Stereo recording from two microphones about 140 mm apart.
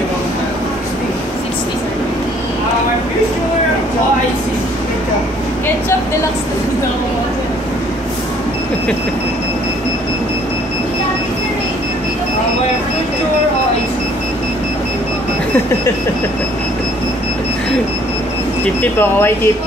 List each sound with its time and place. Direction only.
18.8 s speech: 15° left (ahead or behind)